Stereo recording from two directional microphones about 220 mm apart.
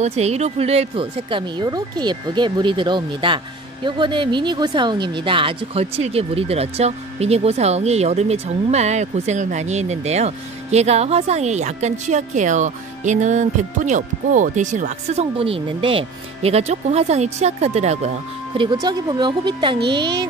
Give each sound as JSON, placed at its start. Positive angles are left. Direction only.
{"t": 0.0, "sound": "speech", "side_deg": -30}
{"t": 18.6, "sound": "speech", "side_deg": -20}